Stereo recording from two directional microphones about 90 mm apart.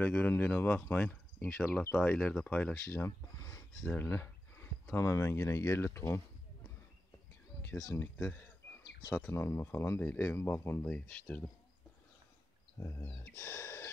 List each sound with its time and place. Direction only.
0.0 s speech: 20° left (ahead or behind)
3.1 s a sound: 30° left (ahead or behind)
4.9 s speech: 30° left (ahead or behind)
8.2 s speech: 20° left (ahead or behind)
13.0 s speech: 25° left (ahead or behind)